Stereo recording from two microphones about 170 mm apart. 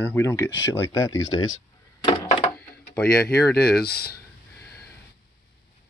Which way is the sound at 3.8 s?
65° left (ahead or behind).